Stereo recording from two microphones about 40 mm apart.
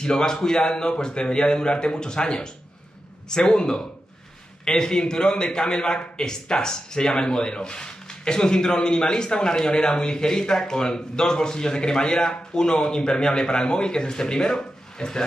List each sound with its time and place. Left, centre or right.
0.0 s a man's voice: centre